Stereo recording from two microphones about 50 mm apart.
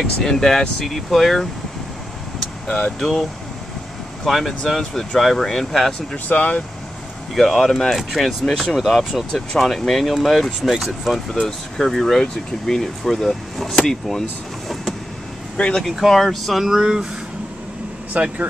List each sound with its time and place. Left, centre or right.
0.0 s speech: centre
2.7 s speech: centre
6.2 s speech: left
7.3 s speech: centre
8.0 s speech: centre
15.5 s speech: left
16.0 s speech: centre
16.8 s speech: centre
18.1 s speech: right